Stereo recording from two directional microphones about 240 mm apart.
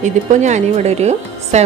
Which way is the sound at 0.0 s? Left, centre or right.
Right.